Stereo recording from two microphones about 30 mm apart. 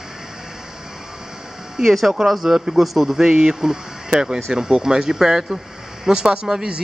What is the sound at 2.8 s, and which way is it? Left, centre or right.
Speech, centre.